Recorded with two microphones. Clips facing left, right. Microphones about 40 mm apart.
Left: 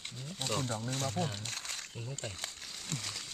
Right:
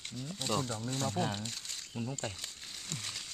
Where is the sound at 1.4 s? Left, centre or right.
Left.